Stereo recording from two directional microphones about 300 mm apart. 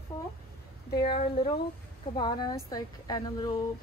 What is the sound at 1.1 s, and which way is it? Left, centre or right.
A woman's voice, centre.